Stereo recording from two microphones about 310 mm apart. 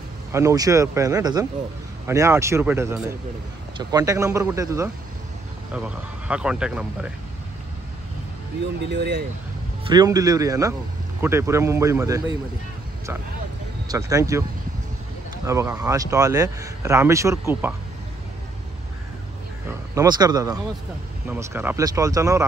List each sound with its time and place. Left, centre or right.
0.3 s speech: centre
8.8 s speech: right
9.8 s speech: centre
13.8 s speech: centre
15.4 s speech: centre
19.9 s speech: centre